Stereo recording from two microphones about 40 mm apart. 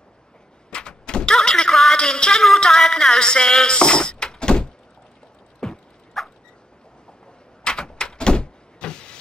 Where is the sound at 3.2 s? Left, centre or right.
Left.